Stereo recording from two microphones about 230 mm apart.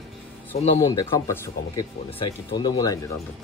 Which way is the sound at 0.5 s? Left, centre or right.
Left.